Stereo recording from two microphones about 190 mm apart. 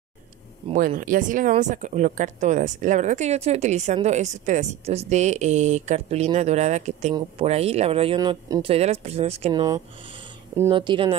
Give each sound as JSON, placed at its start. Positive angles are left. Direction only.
{"t": 0.7, "sound": "speech", "side_deg": -45}
{"t": 8.6, "sound": "speech", "side_deg": -35}
{"t": 9.5, "sound": "speech", "side_deg": -20}